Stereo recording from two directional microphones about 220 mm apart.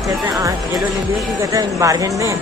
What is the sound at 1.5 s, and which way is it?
Speech, 15° right (ahead or behind).